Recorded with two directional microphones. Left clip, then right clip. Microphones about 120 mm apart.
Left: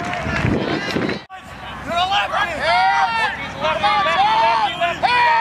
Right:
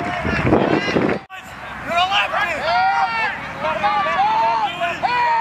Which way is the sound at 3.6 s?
40° left (ahead or behind).